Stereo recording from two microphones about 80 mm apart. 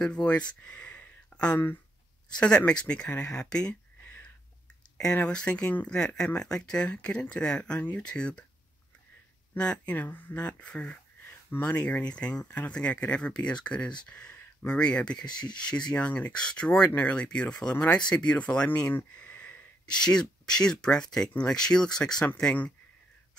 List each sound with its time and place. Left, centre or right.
0.0 s speech: centre
4.9 s speech: centre
9.6 s speech: centre
14.0 s a sound: centre
14.8 s speech: centre